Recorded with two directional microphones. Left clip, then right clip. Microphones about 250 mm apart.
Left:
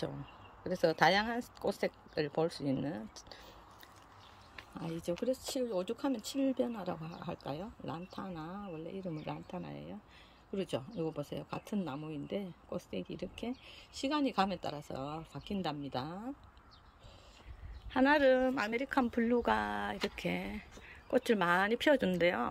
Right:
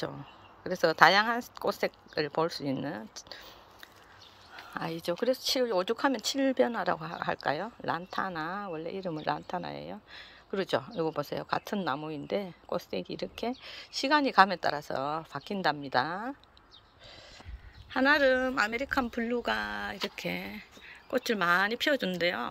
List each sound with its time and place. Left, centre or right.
0.7 s speech: centre
4.7 s speech: centre
17.9 s speech: centre